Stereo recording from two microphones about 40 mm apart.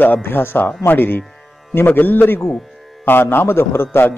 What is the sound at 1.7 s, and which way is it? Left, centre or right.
Speech, left.